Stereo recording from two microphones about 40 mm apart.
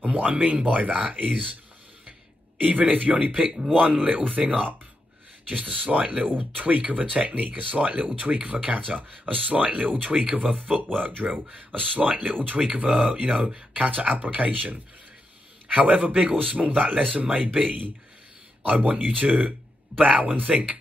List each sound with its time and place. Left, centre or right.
0.0 s speech: right
2.6 s speech: right